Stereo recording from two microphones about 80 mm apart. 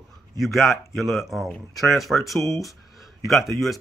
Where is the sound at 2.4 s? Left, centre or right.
Left.